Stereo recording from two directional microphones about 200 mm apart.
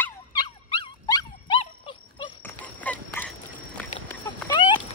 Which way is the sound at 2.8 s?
10° left (ahead or behind).